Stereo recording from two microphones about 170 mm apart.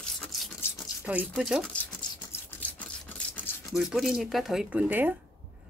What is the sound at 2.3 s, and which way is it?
Rub, 10° left (ahead or behind).